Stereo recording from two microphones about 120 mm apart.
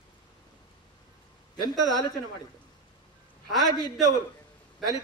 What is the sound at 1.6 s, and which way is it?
Speech, 30° right (ahead or behind).